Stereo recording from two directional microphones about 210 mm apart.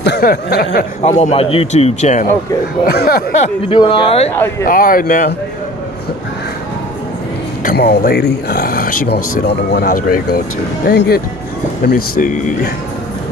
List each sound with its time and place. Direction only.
0.0 s speech: 50° left (ahead or behind)
1.0 s a man's voice: 30° left (ahead or behind)
2.9 s speech: 50° left (ahead or behind)
3.6 s speech: 25° left (ahead or behind)
4.6 s a man's voice: 40° left (ahead or behind)
7.6 s a man's voice: 50° left (ahead or behind)